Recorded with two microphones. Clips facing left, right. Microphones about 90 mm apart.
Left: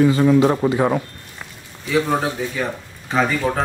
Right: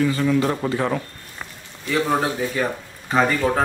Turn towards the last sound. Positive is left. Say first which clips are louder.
# even
turn(degrees=0)  # may be behind; listen again after turning